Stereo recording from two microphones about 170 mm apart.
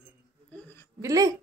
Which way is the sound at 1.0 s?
20° right (ahead or behind).